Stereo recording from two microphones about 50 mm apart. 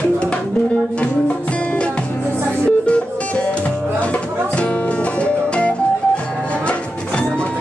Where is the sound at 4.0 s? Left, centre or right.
Left.